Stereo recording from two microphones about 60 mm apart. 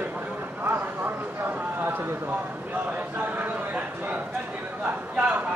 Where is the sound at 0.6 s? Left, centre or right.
Right.